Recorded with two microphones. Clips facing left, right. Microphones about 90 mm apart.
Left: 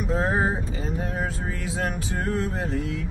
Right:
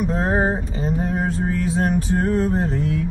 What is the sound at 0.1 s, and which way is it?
Mantra, 40° right (ahead or behind).